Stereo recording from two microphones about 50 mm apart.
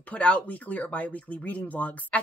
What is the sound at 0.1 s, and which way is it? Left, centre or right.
Speech, left.